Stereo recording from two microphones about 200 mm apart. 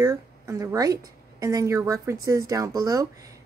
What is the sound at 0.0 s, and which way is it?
Speech, 15° right (ahead or behind).